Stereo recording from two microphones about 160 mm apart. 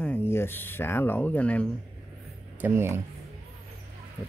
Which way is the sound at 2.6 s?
15° right (ahead or behind).